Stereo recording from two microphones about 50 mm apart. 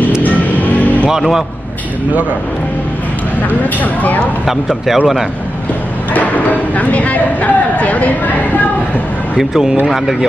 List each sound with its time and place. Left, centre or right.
0.2 s music: left
1.1 s speech: centre
3.4 s speech: left
4.5 s speech: centre
6.1 s a sound: left
9.4 s speech: centre